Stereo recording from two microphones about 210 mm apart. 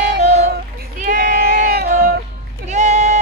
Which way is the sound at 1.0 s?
40° right (ahead or behind).